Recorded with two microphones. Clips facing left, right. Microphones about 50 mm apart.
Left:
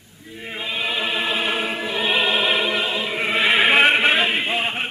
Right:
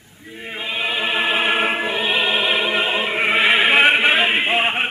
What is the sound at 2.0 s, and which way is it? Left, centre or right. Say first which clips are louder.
Music: left 3 dB; centre.